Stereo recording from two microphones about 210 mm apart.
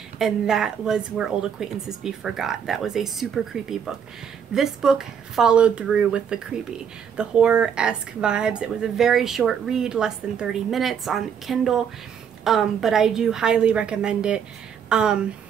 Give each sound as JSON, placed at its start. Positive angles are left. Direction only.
{"t": 0.2, "sound": "a woman's voice", "side_deg": 0}